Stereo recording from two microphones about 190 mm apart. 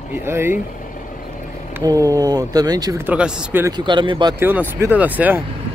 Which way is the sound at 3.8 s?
25° right (ahead or behind).